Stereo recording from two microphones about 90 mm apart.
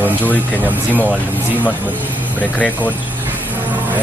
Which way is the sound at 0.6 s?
20° right (ahead or behind).